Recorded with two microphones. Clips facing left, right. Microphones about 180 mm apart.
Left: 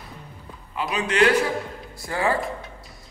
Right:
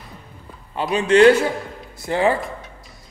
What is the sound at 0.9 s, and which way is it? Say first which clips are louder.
A man's voice: right 7 dB; 30° right (ahead or behind).